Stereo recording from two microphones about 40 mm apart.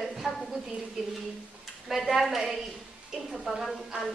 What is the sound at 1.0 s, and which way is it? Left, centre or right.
A woman's voice, centre.